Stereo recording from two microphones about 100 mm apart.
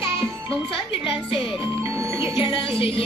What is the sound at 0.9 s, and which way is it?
Music, 65° left (ahead or behind).